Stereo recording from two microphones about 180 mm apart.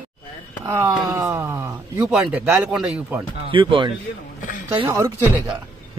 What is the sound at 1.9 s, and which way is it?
Speech, 5° right (ahead or behind).